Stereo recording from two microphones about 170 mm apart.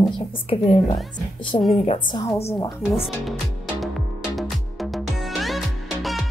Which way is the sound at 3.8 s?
Centre (ahead or behind).